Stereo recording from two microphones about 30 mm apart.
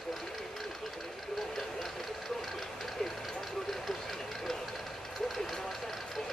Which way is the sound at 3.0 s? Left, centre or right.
Centre.